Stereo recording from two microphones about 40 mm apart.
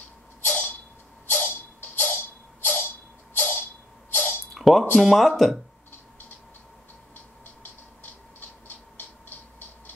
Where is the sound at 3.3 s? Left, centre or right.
Left.